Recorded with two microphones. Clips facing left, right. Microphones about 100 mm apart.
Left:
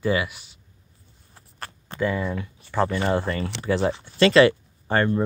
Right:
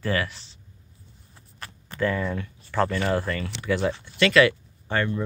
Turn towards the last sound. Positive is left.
turn(degrees=40)  # may be behind; listen again after turning